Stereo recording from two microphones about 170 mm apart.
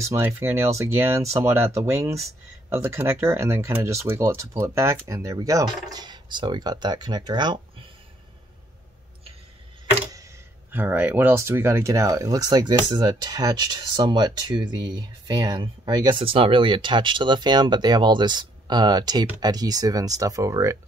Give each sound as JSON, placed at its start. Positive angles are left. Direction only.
{"t": 0.0, "sound": "speech", "side_deg": -15}
{"t": 10.7, "sound": "speech", "side_deg": -10}